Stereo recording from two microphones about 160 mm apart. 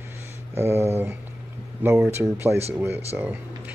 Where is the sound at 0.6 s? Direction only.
15° right (ahead or behind).